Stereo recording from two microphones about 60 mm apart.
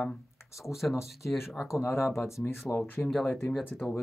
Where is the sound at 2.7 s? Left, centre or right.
Left.